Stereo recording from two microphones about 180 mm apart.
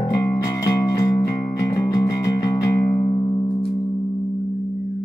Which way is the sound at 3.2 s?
25° left (ahead or behind).